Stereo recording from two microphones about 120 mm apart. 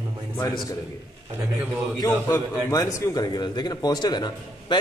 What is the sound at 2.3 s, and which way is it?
A man's voice, 30° left (ahead or behind).